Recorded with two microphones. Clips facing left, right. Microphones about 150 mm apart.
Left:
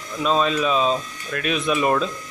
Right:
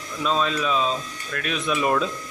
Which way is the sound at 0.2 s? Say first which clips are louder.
Left 3 dB; 15° left (ahead or behind).